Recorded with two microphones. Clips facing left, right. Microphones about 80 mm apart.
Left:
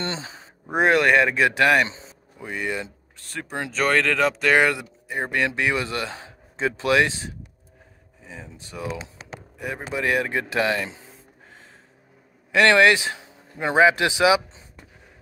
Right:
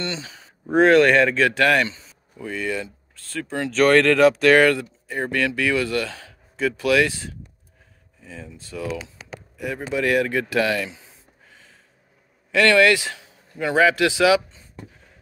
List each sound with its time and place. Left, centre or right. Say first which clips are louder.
0.0 s speech: even; left
0.7 s speech: right 4 dB; centre
3.7 s speech: right 6 dB; centre; by 11.1 s left
12.4 s a man's voice: even; left